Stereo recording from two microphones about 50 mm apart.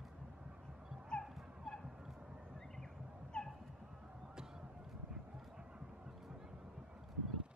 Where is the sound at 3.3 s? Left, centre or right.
Centre.